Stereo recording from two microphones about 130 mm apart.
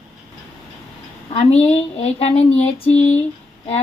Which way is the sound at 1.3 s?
50° left (ahead or behind).